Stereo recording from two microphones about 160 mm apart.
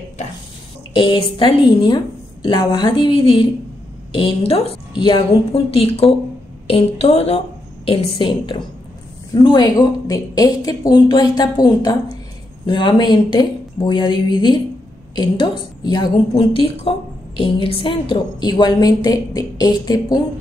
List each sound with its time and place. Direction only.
0.9 s a woman's voice: 30° left (ahead or behind)